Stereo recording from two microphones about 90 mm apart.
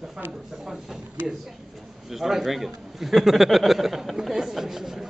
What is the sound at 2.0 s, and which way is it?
A man's voice, 5° right (ahead or behind).